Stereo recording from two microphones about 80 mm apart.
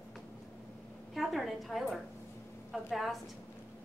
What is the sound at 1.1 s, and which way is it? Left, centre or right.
A woman's voice, centre.